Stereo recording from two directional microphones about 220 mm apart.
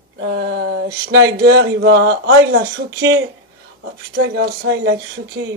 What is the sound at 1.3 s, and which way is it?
Speech, 45° right (ahead or behind).